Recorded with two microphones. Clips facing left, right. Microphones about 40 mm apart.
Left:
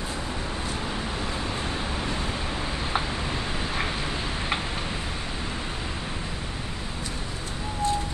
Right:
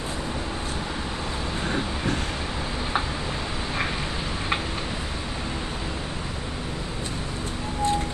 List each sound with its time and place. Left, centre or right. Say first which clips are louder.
7.8 s music: right 2 dB; right